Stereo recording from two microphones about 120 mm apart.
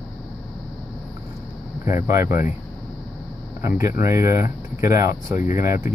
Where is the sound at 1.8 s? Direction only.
25° right (ahead or behind).